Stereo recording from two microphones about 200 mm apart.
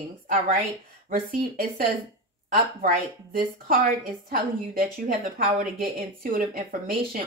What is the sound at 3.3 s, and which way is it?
Speech, 45° right (ahead or behind).